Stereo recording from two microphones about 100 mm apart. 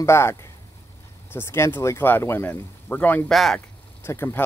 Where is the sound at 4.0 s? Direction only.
25° left (ahead or behind).